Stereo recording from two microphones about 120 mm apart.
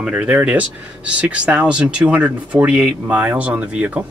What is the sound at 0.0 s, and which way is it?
Speech, 10° right (ahead or behind).